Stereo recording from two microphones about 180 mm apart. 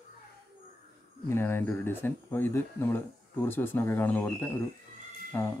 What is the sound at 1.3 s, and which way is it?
Speech, 10° left (ahead or behind).